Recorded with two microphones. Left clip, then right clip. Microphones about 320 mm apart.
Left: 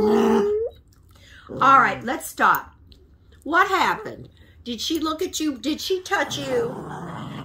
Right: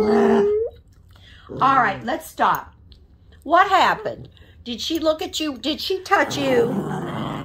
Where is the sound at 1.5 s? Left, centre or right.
Centre.